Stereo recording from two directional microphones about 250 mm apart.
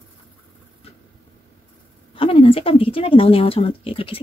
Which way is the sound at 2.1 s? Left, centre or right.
Left.